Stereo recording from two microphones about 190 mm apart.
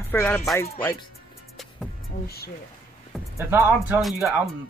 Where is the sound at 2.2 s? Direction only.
55° left (ahead or behind).